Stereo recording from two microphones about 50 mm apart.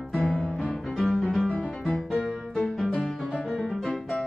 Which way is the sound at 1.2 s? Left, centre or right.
Centre.